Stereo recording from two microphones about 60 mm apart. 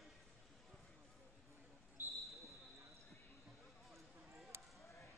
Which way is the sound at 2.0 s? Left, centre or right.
Right.